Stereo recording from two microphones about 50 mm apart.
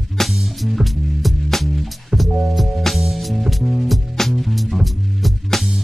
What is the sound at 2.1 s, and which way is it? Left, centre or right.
Music, centre.